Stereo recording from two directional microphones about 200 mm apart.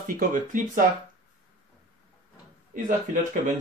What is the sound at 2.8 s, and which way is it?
Speech, 40° right (ahead or behind).